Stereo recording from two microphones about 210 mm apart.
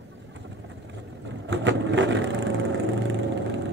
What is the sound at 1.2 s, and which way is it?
Vehicle, 60° right (ahead or behind).